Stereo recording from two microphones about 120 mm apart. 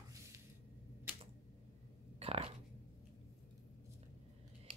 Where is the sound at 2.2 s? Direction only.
55° right (ahead or behind).